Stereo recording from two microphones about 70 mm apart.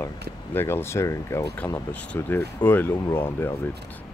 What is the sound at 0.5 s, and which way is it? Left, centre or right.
Speech, left.